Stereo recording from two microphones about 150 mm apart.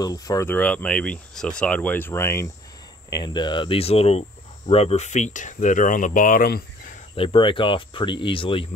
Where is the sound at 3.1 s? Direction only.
30° left (ahead or behind); by 6.6 s 70° left (ahead or behind).